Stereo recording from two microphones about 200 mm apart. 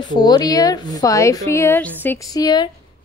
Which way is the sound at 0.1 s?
20° left (ahead or behind).